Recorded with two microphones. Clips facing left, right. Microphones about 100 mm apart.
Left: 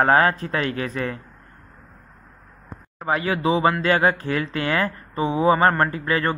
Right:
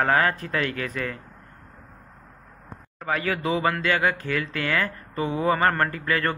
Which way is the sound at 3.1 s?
25° left (ahead or behind).